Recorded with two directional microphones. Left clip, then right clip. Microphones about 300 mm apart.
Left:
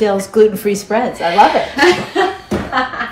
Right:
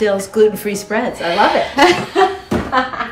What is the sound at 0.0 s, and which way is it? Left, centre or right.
Speech, centre.